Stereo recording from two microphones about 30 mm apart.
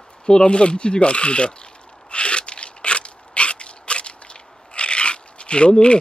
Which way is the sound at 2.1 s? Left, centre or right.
Left.